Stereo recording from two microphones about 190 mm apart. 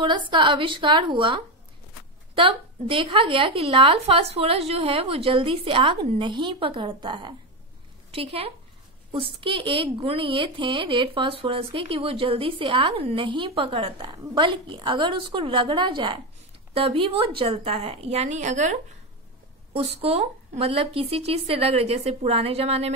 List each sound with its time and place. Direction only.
0.0 s a woman's voice: 25° right (ahead or behind)